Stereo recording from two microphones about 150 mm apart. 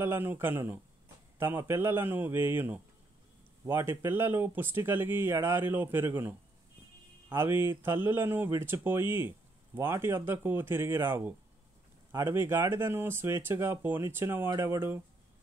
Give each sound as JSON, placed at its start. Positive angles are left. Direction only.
{"t": 0.0, "sound": "speech", "side_deg": -15}